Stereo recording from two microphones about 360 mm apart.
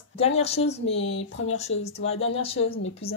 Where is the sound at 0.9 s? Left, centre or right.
Left.